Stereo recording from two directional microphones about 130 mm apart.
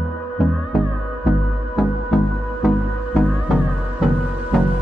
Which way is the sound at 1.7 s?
Centre (ahead or behind).